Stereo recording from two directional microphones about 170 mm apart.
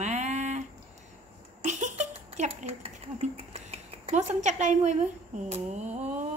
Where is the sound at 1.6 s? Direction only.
45° right (ahead or behind).